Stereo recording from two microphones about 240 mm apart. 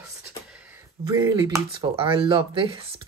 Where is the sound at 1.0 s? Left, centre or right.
Centre.